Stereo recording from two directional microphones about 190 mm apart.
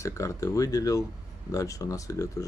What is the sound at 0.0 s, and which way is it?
Speech, 15° left (ahead or behind).